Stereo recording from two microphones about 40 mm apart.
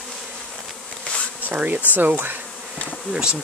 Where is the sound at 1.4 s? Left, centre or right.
Right.